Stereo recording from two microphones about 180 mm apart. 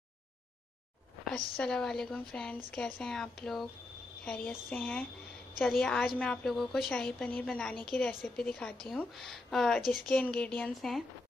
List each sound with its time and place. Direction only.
1.6 s a woman's voice: 5° left (ahead or behind)